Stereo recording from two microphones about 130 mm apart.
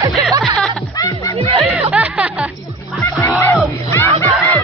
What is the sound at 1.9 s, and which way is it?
Music, 5° right (ahead or behind).